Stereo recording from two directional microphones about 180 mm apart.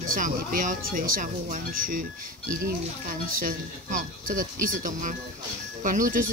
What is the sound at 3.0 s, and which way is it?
Speech, 50° right (ahead or behind).